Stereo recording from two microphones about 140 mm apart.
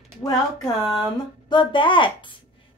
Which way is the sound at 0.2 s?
20° left (ahead or behind).